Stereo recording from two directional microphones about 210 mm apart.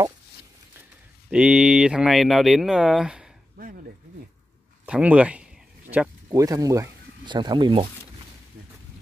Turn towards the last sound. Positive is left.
turn(degrees=-25)  # may be behind; listen again after turning